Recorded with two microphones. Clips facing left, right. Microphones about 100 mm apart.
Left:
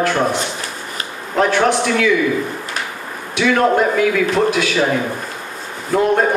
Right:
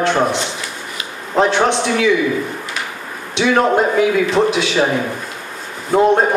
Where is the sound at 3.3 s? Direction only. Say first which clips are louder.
Even; 25° right (ahead or behind).